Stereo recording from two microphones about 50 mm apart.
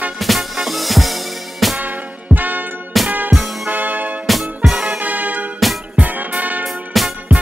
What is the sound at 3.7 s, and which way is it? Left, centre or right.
Music, right.